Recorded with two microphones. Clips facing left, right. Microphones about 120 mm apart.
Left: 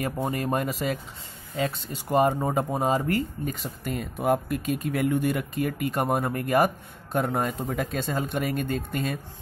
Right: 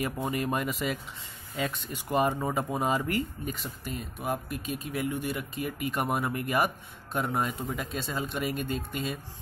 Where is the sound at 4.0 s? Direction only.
55° left (ahead or behind).